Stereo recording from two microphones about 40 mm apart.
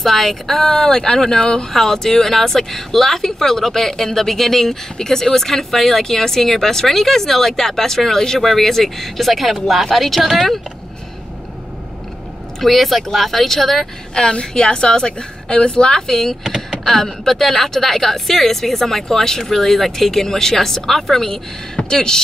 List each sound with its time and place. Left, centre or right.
0.0 s a woman's voice: centre; by 1.7 s left
1.7 s speech: centre
12.5 s speech: centre
14.1 s a woman's voice: centre